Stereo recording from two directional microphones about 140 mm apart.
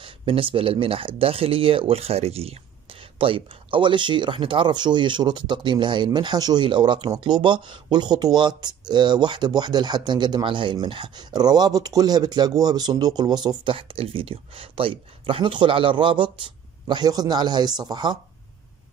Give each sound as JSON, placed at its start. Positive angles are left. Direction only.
{"t": 0.0, "sound": "speech", "side_deg": -40}